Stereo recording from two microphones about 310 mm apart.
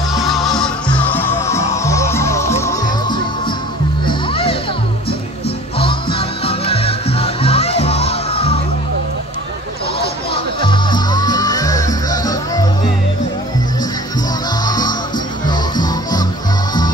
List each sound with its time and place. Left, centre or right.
0.1 s music: centre
5.8 s music: centre
10.3 s music: centre
14.6 s music: centre